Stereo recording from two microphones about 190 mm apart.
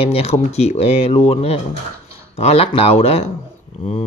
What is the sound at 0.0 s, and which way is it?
Speech, 30° left (ahead or behind).